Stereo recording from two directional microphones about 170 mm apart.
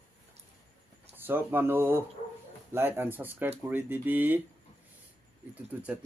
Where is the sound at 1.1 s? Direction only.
10° right (ahead or behind).